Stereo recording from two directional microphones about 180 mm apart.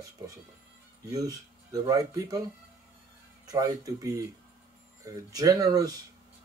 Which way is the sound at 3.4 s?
20° right (ahead or behind).